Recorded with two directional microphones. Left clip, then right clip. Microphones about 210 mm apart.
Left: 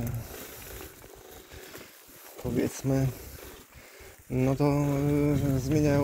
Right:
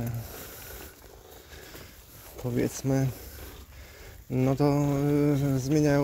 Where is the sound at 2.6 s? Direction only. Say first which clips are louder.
Right 1 dB; 25° right (ahead or behind).